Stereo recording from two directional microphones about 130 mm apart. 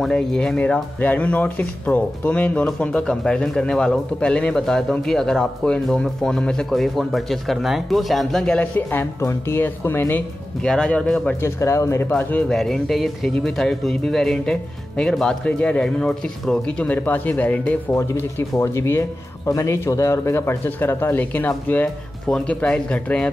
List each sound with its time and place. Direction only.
0.0 s speech: 5° left (ahead or behind)
11.4 s speech: 20° left (ahead or behind)